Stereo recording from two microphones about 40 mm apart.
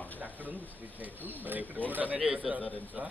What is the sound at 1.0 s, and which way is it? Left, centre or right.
Speech, right.